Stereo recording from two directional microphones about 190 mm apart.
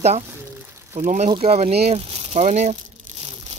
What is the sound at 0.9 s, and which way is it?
Speech, 40° right (ahead or behind).